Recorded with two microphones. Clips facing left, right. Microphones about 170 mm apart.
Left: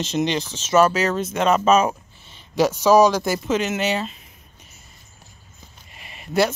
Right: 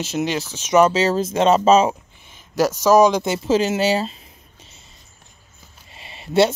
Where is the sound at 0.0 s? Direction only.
5° right (ahead or behind); by 4.1 s 30° right (ahead or behind).